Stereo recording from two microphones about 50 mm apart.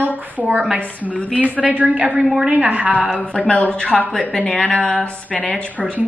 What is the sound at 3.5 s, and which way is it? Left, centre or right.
Speech, left.